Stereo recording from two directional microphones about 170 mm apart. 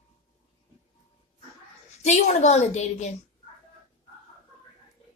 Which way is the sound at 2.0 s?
40° left (ahead or behind).